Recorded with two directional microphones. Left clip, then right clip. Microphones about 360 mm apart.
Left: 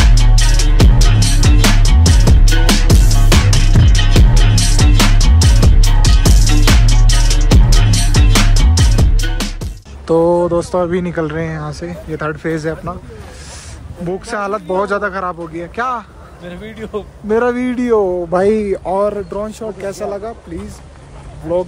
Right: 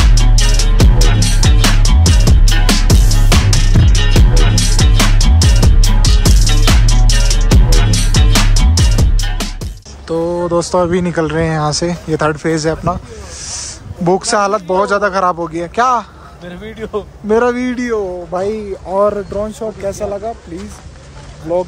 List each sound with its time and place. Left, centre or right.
0.0 s music: centre
10.0 s speech: centre
18.3 s speech: left
18.9 s speech: centre